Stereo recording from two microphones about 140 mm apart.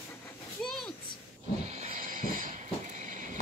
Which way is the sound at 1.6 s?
55° right (ahead or behind).